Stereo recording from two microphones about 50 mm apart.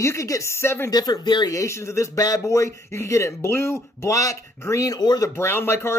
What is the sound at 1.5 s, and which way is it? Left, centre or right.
Speech, left.